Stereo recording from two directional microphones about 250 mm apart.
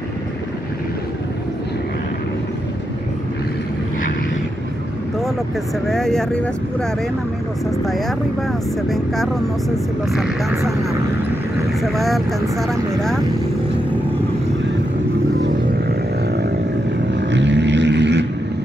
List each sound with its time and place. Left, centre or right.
5.9 s speech: centre
7.7 s speech: centre
11.8 s speech: centre
17.1 s vehicle: right